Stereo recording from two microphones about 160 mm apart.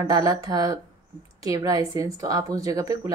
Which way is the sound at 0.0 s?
20° right (ahead or behind).